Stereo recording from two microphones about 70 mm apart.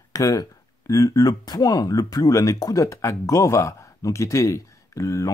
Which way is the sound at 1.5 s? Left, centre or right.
Left.